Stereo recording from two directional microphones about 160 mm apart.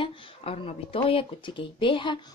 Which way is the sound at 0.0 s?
35° left (ahead or behind).